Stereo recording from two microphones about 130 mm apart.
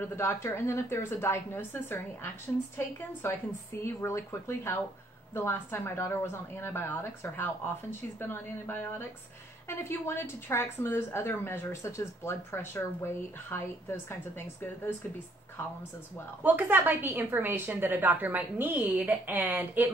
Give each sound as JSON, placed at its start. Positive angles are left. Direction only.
{"t": 0.1, "sound": "a woman's voice", "side_deg": 20}
{"t": 3.8, "sound": "a woman's voice", "side_deg": 20}
{"t": 16.4, "sound": "a woman's voice", "side_deg": -15}